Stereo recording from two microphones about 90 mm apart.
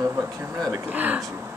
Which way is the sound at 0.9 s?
20° right (ahead or behind).